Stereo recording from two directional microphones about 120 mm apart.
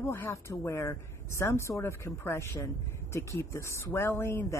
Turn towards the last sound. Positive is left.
turn(degrees=20)  # may be behind; listen again after turning